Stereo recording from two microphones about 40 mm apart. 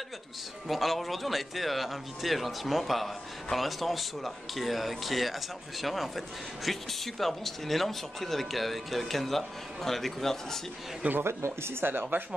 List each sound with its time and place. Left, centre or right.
0.7 s speech: centre
11.2 s speech: right